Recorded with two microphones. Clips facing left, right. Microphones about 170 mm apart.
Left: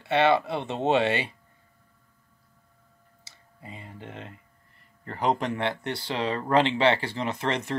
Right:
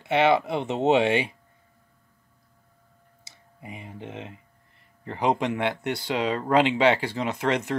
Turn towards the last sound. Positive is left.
turn(degrees=-15)  # may be behind; listen again after turning